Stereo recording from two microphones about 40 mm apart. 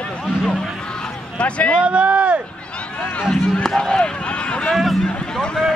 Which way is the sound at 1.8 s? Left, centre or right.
Right.